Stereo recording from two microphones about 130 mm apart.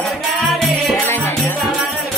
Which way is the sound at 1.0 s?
15° left (ahead or behind).